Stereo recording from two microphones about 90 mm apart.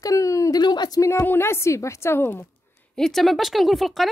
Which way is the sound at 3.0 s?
5° left (ahead or behind).